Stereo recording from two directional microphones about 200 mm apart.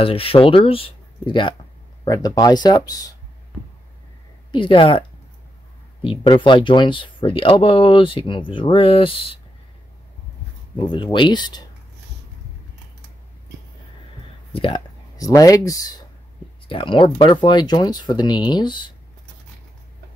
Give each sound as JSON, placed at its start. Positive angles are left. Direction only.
{"t": 0.0, "sound": "speech", "side_deg": 30}
{"t": 4.5, "sound": "speech", "side_deg": 25}
{"t": 6.0, "sound": "speech", "side_deg": 25}
{"t": 10.8, "sound": "speech", "side_deg": 25}
{"t": 14.5, "sound": "speech", "side_deg": 25}